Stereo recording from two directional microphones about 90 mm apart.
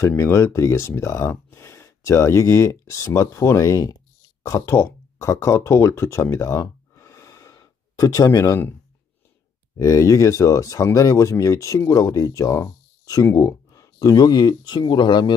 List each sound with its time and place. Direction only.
0.0 s speech: 30° left (ahead or behind)
3.9 s a sound: 40° left (ahead or behind)
9.8 s speech: 35° left (ahead or behind); by 15.3 s 55° left (ahead or behind)